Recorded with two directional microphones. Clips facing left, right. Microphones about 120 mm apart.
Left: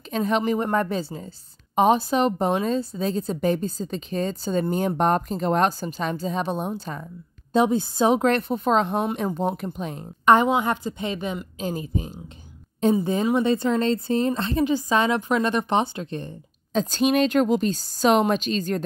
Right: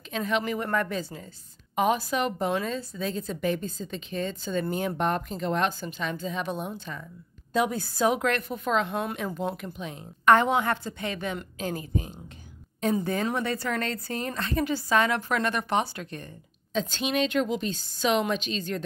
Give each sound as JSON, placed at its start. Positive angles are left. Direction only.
{"t": 0.1, "sound": "a woman's voice", "side_deg": 35}
{"t": 7.5, "sound": "a woman's voice", "side_deg": 25}
{"t": 10.2, "sound": "speech", "side_deg": 20}
{"t": 16.7, "sound": "a woman's voice", "side_deg": 45}